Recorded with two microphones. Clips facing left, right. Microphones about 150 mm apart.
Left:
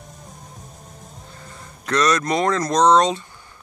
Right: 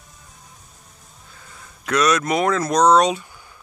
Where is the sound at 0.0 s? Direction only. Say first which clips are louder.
Left 7 dB; 40° left (ahead or behind).